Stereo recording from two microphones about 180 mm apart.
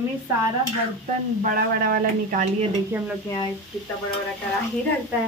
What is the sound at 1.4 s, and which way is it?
Speech, 55° right (ahead or behind).